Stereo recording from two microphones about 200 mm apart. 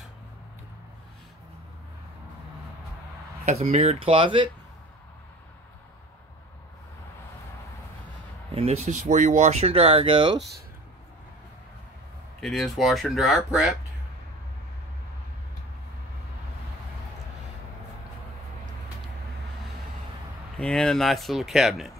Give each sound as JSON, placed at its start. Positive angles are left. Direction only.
{"t": 3.4, "sound": "speech", "side_deg": -35}
{"t": 8.5, "sound": "speech", "side_deg": -30}
{"t": 12.4, "sound": "speech", "side_deg": 0}
{"t": 20.5, "sound": "speech", "side_deg": 5}